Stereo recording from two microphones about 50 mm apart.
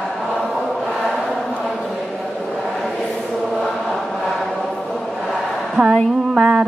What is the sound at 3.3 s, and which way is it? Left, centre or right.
Chant, centre.